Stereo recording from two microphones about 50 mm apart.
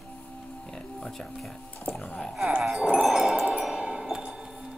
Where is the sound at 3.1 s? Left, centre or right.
Centre.